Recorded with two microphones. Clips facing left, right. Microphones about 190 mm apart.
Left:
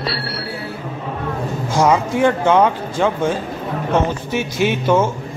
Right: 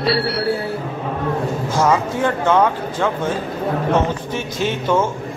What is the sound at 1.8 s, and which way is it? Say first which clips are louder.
Speech: left 3 dB; 15° left (ahead or behind).